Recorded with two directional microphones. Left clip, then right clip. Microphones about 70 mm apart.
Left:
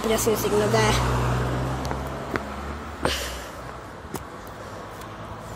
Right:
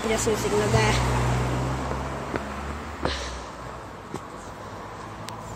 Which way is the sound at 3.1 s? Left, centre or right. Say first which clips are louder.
Left 4 dB; left.